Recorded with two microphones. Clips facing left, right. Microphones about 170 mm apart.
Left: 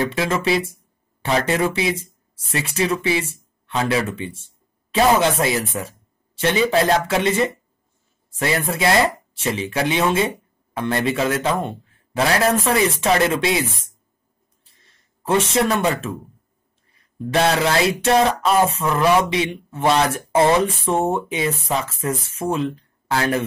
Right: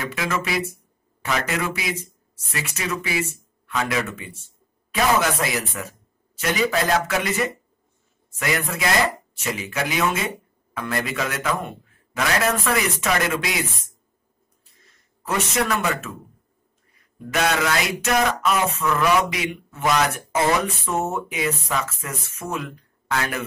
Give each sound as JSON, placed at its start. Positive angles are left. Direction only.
{"t": 0.0, "sound": "speech", "side_deg": 30}
{"t": 15.2, "sound": "speech", "side_deg": 30}